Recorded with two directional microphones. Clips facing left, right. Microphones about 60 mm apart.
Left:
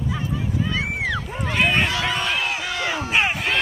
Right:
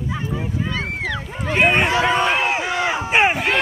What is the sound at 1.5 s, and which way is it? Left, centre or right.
Run, right.